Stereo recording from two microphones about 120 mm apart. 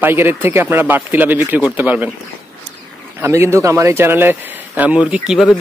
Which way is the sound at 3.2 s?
25° right (ahead or behind).